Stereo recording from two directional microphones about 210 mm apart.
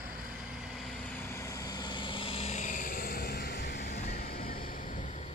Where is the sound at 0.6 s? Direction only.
Centre (ahead or behind).